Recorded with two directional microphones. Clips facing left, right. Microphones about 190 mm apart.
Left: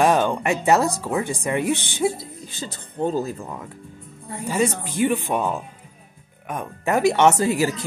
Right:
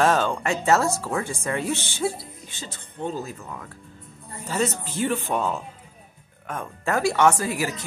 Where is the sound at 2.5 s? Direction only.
35° left (ahead or behind).